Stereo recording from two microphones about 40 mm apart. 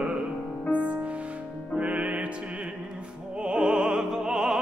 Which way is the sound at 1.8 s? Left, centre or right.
Right.